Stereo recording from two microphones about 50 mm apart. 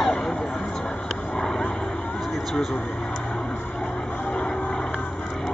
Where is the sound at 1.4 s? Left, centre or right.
Centre.